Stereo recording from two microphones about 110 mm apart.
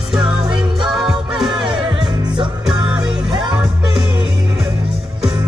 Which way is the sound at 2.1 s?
40° right (ahead or behind).